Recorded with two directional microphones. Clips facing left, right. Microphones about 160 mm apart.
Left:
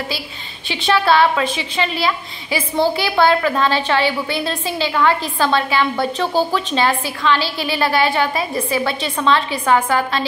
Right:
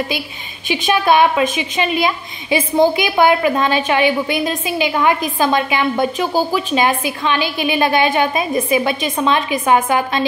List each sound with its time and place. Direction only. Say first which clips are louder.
0.7 s a woman's voice: right 1 dB; 15° right (ahead or behind)